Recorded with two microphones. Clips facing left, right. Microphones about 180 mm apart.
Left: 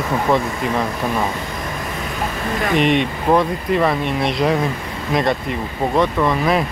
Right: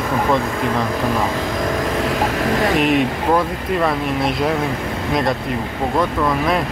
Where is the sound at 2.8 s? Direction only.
Centre (ahead or behind).